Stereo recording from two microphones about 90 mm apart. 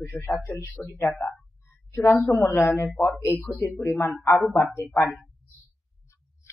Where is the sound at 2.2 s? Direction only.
5° left (ahead or behind).